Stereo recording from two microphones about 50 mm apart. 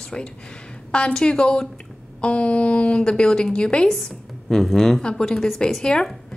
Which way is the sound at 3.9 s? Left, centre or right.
Centre.